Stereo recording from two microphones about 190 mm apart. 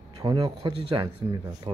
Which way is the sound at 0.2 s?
20° right (ahead or behind).